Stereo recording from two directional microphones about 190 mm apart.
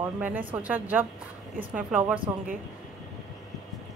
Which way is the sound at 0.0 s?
10° right (ahead or behind).